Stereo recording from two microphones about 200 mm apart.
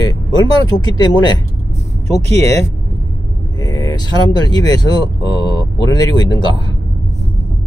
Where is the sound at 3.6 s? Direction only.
20° left (ahead or behind).